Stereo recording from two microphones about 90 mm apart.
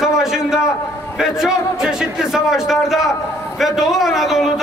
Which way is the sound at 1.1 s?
5° right (ahead or behind).